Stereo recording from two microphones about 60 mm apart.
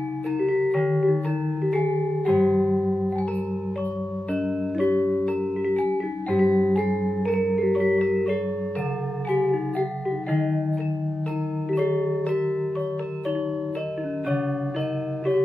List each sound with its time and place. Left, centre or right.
0.4 s music: centre
2.3 s music: centre
4.9 s music: left
6.3 s music: centre